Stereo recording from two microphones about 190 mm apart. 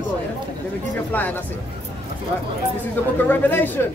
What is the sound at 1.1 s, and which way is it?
Speech, 10° left (ahead or behind).